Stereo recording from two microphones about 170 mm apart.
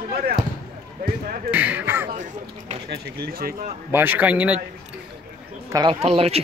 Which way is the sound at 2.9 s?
65° right (ahead or behind).